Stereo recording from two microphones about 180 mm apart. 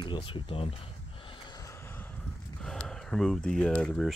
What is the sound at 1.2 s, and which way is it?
Vehicle, 25° left (ahead or behind).